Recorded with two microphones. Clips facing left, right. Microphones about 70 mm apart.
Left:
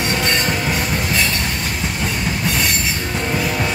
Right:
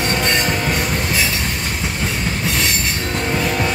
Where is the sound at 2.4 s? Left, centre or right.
Centre.